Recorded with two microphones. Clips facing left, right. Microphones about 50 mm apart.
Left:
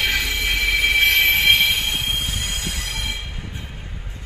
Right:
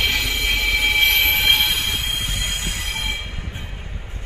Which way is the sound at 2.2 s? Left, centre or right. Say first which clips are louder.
Right 1 dB; right.